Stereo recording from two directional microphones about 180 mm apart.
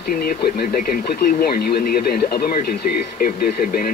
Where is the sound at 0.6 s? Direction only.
55° left (ahead or behind).